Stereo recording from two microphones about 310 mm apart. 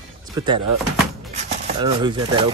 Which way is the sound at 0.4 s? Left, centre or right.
Centre.